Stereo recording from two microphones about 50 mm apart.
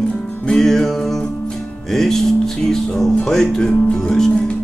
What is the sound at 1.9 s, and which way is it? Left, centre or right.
Music, centre.